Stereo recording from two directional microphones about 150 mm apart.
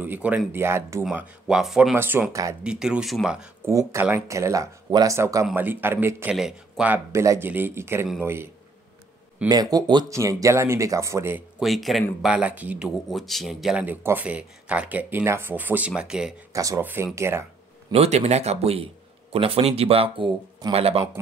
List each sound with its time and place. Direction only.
0.0 s speech: 10° right (ahead or behind)
1.1 s speech: 5° right (ahead or behind)
2.0 s speech: 15° right (ahead or behind)
2.6 s speech: 5° right (ahead or behind)
3.6 s speech: 15° right (ahead or behind)
7.1 s speech: 20° right (ahead or behind)
9.5 s speech: 25° right (ahead or behind)
11.6 s speech: centre (ahead or behind)
16.5 s speech: 20° right (ahead or behind)
17.9 s speech: 45° right (ahead or behind)